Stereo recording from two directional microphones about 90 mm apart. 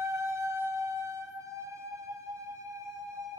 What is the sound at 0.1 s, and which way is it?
Music, 30° right (ahead or behind).